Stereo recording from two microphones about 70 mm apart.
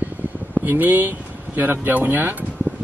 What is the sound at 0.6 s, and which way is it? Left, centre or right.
Speech, right.